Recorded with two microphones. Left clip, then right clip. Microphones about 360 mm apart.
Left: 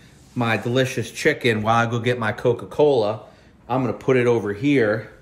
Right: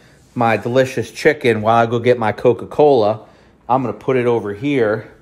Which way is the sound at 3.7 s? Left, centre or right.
Centre.